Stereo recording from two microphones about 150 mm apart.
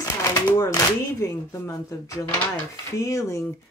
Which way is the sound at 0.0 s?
20° left (ahead or behind).